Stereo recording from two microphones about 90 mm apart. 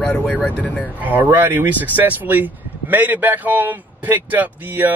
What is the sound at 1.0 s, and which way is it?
Speech, 20° right (ahead or behind).